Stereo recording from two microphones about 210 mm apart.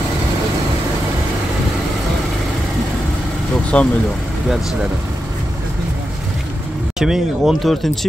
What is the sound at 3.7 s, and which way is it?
Speech, 5° left (ahead or behind).